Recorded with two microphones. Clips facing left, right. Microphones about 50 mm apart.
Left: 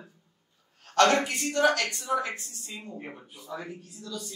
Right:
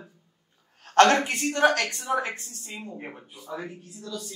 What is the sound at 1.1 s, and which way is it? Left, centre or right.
Speech, right.